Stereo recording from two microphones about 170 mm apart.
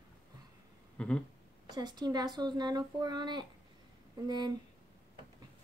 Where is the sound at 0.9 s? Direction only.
5° left (ahead or behind).